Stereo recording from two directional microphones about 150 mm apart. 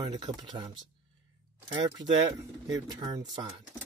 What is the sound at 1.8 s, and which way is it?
Speech, 30° right (ahead or behind).